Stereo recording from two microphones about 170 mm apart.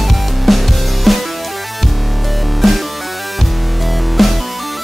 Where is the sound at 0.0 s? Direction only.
Centre (ahead or behind).